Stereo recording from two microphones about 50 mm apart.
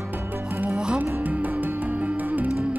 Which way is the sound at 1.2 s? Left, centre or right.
Right.